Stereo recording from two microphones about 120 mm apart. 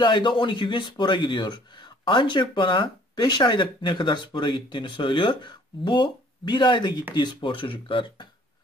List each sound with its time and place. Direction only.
0.0 s a man's voice: 40° left (ahead or behind)